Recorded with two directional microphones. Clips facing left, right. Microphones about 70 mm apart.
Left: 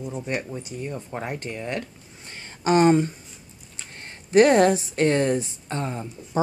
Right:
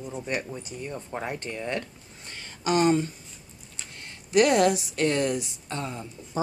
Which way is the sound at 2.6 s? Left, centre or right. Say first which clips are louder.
Left 5 dB; left.